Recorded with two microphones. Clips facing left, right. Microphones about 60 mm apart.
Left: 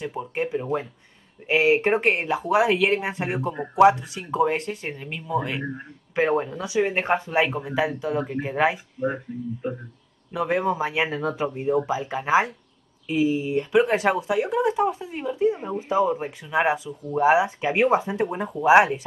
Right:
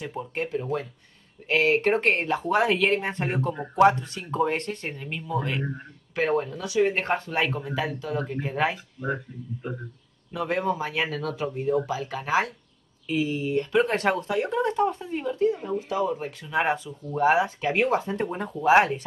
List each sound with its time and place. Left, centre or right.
0.0 s speech: centre
0.6 s speech: left
2.0 s speech: centre
6.1 s speech: left; by 15.4 s centre
15.4 s speech: left
16.4 s speech: centre
18.1 s speech: centre